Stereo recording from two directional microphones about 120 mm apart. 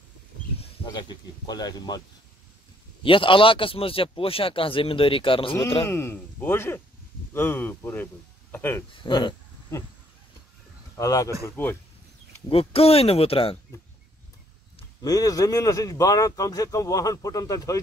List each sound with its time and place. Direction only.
0.9 s speech: 35° left (ahead or behind)
3.0 s speech: 45° left (ahead or behind)
5.9 s a man's voice: 20° left (ahead or behind)
8.9 s speech: 40° left (ahead or behind)
11.0 s a man's voice: 25° left (ahead or behind)
12.4 s speech: 55° left (ahead or behind)
15.0 s a man's voice: 30° left (ahead or behind)